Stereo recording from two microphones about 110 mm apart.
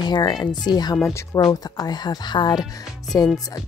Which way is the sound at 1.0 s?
25° left (ahead or behind).